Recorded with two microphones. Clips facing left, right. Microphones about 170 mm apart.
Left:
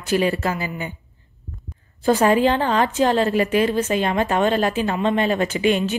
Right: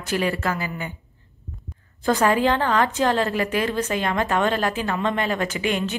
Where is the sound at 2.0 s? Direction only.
20° left (ahead or behind).